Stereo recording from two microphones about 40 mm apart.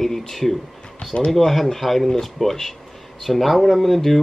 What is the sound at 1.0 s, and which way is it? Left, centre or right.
Speech, centre.